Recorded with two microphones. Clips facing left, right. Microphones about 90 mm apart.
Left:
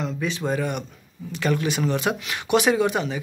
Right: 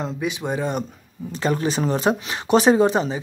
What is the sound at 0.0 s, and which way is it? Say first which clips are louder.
Speech: right 1 dB; 15° right (ahead or behind).